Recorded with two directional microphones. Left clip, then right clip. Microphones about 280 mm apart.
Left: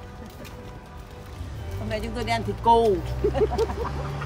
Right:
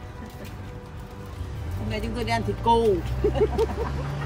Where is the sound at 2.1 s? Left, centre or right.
Centre.